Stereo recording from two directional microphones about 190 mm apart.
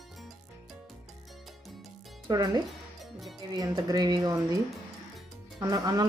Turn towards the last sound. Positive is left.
turn(degrees=-20)  # may be behind; listen again after turning